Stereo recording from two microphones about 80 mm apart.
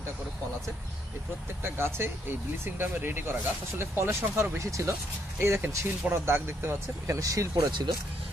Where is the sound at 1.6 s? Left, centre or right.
Right.